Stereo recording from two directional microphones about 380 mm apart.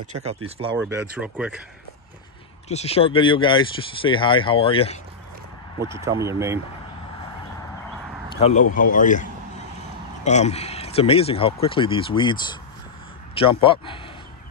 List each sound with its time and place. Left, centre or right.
0.2 s speech: centre
2.7 s speech: centre
5.8 s speech: centre
8.4 s speech: centre